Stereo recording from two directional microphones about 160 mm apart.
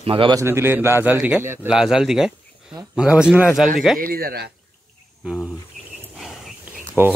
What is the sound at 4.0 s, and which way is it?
Speech, 65° right (ahead or behind).